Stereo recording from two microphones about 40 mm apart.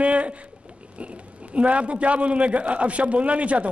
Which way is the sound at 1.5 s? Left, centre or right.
Right.